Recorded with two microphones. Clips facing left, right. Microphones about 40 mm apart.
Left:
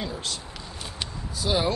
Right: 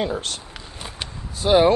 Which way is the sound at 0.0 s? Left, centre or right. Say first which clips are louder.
Right 7 dB; right.